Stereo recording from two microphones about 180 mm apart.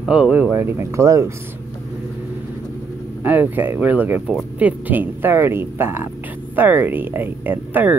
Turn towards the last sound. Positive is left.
turn(degrees=-10)  # may be behind; listen again after turning